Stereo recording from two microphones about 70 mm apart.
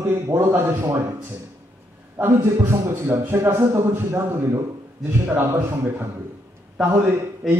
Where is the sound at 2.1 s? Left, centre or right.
Right.